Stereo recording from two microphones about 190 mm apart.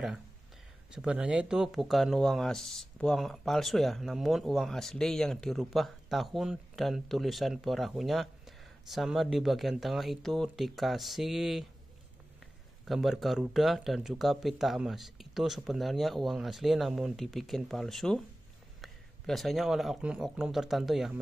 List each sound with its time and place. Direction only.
0.9 s speech: 5° right (ahead or behind)
12.8 s speech: centre (ahead or behind)